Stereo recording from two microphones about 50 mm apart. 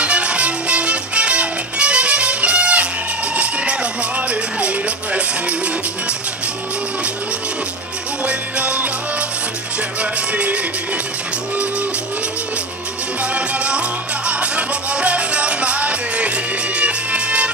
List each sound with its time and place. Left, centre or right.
0.0 s music: right
8.3 s music: right
10.3 s music: right
13.2 s music: right